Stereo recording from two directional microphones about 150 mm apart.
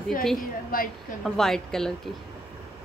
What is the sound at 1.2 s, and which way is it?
Speech, 5° left (ahead or behind).